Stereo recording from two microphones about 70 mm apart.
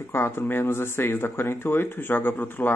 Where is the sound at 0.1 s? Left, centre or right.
Left.